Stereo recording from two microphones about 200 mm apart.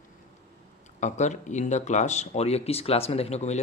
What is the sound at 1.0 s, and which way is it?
Speech, 35° left (ahead or behind).